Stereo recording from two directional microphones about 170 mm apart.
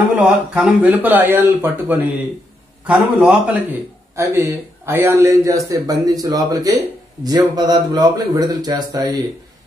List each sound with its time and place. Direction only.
0.2 s a man's voice: 5° right (ahead or behind); by 9.2 s 25° right (ahead or behind)